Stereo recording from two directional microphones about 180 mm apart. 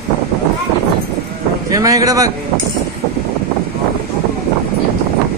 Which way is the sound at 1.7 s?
20° right (ahead or behind).